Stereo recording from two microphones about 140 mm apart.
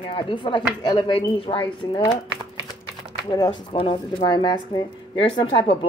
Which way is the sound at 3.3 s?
30° left (ahead or behind).